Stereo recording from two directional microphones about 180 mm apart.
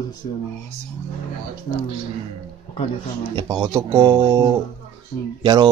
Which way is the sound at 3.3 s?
25° right (ahead or behind).